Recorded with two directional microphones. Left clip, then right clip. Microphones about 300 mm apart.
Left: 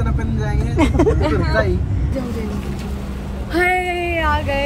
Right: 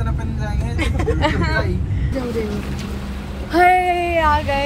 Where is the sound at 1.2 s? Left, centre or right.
Right.